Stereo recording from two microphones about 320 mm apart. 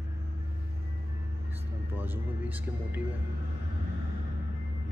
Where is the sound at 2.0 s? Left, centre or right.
Centre.